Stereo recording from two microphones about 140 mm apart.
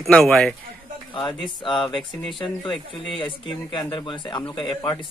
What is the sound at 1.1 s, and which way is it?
Speech, 35° left (ahead or behind).